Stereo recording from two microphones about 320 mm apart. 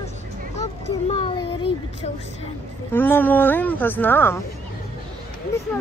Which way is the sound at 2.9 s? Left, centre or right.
Centre.